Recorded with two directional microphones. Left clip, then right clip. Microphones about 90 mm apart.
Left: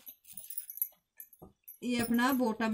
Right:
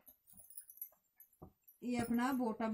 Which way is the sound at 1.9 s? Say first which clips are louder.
Left 7 dB; 25° right (ahead or behind).